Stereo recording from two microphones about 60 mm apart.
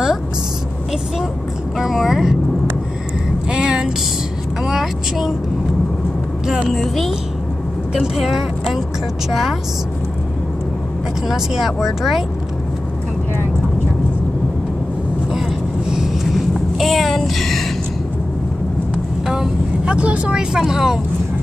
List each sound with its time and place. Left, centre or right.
1.8 s speech: centre
3.4 s a sound: centre
4.6 s speech: centre
6.7 s speech: centre
11.2 s speech: centre
15.9 s a sound: centre
19.2 s speech: centre
20.5 s speech: centre